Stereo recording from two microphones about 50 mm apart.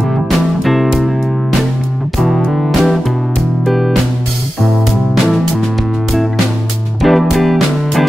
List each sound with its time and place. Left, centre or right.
0.7 s music: centre
2.1 s music: centre
7.0 s music: centre